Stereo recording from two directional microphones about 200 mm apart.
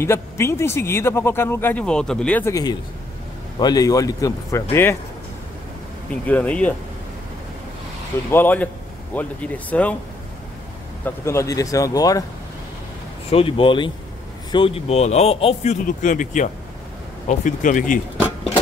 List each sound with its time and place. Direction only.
0.0 s speech: 15° left (ahead or behind)
6.2 s speech: 10° left (ahead or behind)
8.3 s speech: 10° left (ahead or behind)
11.1 s speech: 15° left (ahead or behind)
13.3 s speech: 30° left (ahead or behind)